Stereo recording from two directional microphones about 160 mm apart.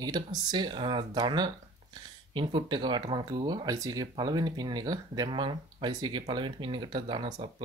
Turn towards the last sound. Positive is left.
turn(degrees=-30)  # may be behind; listen again after turning